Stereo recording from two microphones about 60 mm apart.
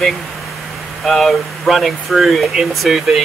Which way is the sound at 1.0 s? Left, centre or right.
Centre.